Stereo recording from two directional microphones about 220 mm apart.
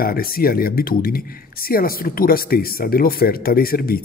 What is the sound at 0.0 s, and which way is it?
Speech, 40° left (ahead or behind).